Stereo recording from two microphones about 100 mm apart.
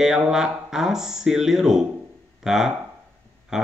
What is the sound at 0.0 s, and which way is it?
Speech, 5° right (ahead or behind).